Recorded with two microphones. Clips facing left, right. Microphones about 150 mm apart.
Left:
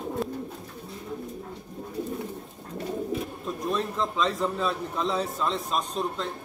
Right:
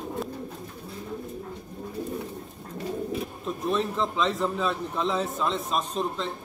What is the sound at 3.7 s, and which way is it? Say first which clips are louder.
A man's voice: right 2 dB; centre (ahead or behind).